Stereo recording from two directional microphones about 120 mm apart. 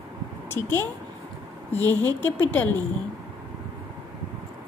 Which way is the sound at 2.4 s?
15° left (ahead or behind).